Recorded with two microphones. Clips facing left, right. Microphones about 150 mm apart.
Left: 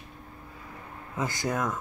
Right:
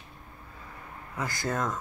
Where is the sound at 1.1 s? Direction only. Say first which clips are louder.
Left 2 dB; 20° left (ahead or behind).